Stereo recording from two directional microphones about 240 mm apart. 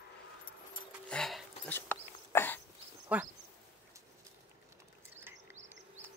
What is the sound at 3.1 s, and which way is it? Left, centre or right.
Speech, centre.